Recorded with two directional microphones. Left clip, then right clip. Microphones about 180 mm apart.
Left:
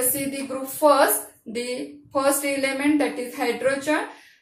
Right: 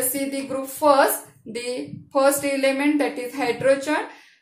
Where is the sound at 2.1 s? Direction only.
55° right (ahead or behind).